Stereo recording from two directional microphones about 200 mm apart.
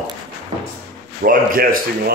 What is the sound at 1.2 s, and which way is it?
Speech, 45° right (ahead or behind).